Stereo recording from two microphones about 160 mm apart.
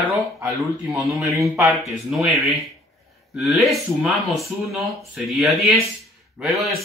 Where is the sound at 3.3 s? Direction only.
Centre (ahead or behind).